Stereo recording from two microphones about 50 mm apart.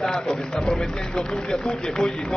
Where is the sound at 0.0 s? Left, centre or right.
Centre.